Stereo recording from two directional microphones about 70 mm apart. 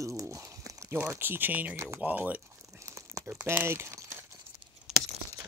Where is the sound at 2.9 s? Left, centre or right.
Right.